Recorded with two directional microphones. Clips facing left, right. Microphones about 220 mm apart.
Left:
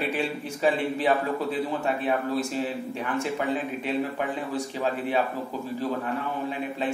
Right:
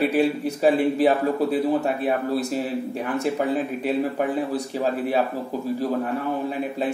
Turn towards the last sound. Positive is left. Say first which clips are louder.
# right 4 dB
turn(degrees=-40)  # may be behind; listen again after turning